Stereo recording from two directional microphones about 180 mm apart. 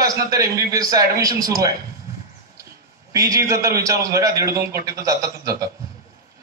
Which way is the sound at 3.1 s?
20° right (ahead or behind).